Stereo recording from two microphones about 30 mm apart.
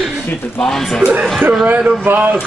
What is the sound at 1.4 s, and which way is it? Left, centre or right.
Speech, right.